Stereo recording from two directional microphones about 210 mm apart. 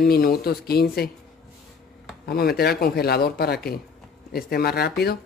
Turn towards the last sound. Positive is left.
turn(degrees=50)  # may be behind; listen again after turning